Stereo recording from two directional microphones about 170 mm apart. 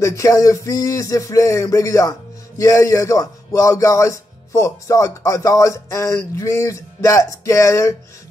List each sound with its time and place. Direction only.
0.0 s speech: 20° left (ahead or behind)